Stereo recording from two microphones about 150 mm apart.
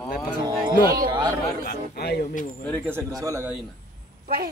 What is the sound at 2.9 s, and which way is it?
Speech, 20° right (ahead or behind).